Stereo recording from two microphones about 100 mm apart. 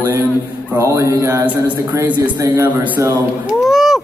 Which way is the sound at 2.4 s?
30° right (ahead or behind).